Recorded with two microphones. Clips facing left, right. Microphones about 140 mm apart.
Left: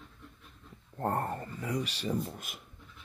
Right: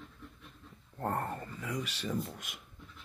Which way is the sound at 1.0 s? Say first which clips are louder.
Left 3 dB; 30° left (ahead or behind).